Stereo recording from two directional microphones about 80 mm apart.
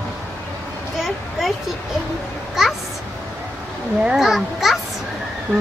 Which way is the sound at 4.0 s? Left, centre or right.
Centre.